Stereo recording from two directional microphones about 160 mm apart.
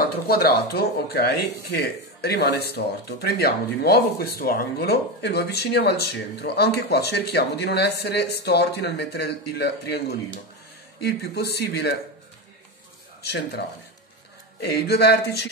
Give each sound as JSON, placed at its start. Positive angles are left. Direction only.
{"t": 0.3, "sound": "speech", "side_deg": 75}
{"t": 3.3, "sound": "speech", "side_deg": 80}
{"t": 13.2, "sound": "speech", "side_deg": 90}
{"t": 14.6, "sound": "speech", "side_deg": 90}